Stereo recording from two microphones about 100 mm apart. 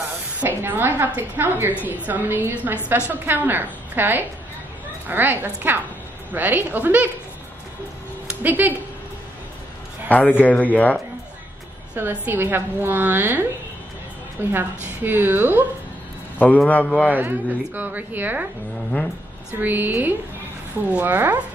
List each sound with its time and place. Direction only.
0.4 s a woman's voice: 20° right (ahead or behind)
8.3 s speech: 20° right (ahead or behind)
10.0 s a man's voice: 15° left (ahead or behind)
11.9 s a woman's voice: 15° right (ahead or behind)
14.5 s a woman's voice: 20° right (ahead or behind)
16.3 s a man's voice: 15° left (ahead or behind)
17.1 s a woman's voice: 20° right (ahead or behind)
19.6 s a woman's voice: 20° right (ahead or behind)